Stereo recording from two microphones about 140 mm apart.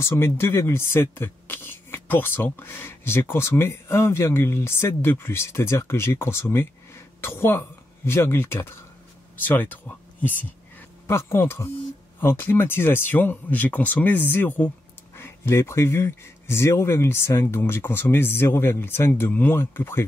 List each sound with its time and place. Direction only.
0.0 s speech: 20° left (ahead or behind)